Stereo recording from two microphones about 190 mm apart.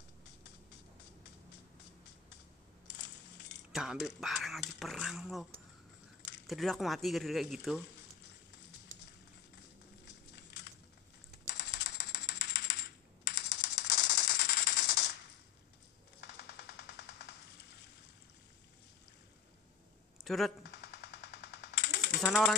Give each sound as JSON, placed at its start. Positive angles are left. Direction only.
{"t": 2.9, "sound": "coin", "side_deg": 65}
{"t": 3.7, "sound": "speech", "side_deg": 0}
{"t": 10.3, "sound": "a sound", "side_deg": 60}
{"t": 11.4, "sound": "typewriter", "side_deg": 60}
{"t": 13.8, "sound": "a sound", "side_deg": 60}
{"t": 16.2, "sound": "music", "side_deg": 60}
{"t": 20.2, "sound": "speech", "side_deg": 0}
{"t": 20.7, "sound": "a sound", "side_deg": 60}
{"t": 22.2, "sound": "speech", "side_deg": 5}